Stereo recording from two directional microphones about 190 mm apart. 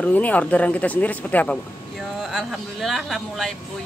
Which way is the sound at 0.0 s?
10° left (ahead or behind).